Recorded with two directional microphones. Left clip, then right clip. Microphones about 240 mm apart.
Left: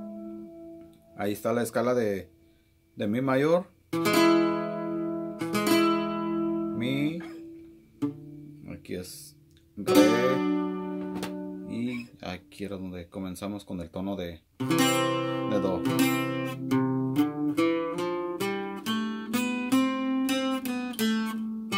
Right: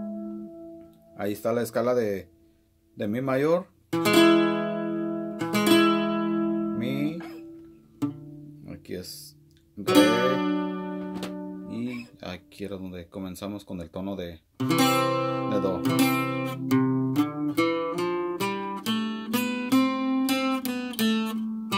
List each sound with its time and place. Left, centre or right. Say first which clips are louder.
1.1 s speech: right 1 dB; centre
3.9 s music: right 3 dB; right
6.8 s music: even; centre
8.6 s music: right 1 dB; centre
10.4 s music: right 1 dB; right
12.2 s speech: even; centre
14.6 s music: right 2 dB; right
15.5 s music: left 1 dB; centre
15.8 s music: right 2 dB; right